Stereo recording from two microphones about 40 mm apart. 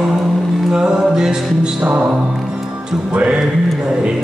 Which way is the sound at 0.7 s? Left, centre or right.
Centre.